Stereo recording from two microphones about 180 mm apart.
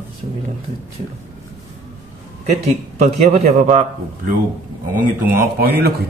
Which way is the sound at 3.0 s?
40° right (ahead or behind).